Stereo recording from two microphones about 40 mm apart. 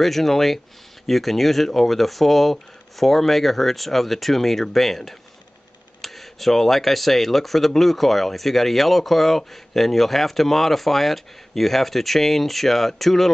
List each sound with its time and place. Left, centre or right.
0.0 s speech: centre